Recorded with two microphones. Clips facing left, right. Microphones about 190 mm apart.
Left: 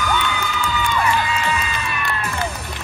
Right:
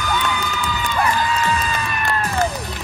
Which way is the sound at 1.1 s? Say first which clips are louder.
Right 1 dB; 45° right (ahead or behind).